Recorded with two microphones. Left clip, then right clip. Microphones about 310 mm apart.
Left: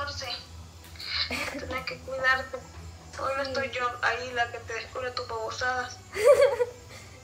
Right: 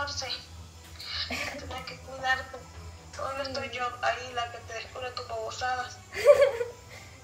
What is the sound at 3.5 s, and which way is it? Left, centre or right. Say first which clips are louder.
Speech: left 4 dB; centre.